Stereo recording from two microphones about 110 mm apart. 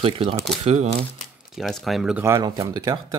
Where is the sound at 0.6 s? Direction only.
80° right.